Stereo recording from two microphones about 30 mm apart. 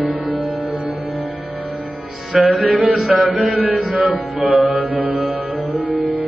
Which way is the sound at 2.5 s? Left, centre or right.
Right.